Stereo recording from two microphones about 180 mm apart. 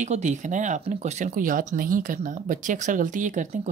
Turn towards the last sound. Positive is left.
turn(degrees=-45)  # may be behind; listen again after turning